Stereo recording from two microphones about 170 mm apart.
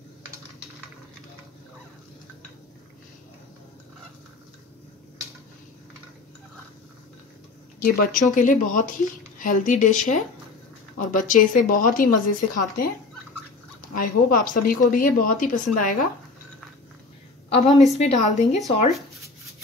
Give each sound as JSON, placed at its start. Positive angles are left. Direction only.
{"t": 7.8, "sound": "speech", "side_deg": 50}
{"t": 17.5, "sound": "a woman's voice", "side_deg": 40}